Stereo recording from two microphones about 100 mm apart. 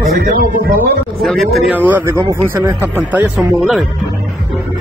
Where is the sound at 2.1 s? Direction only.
30° right (ahead or behind).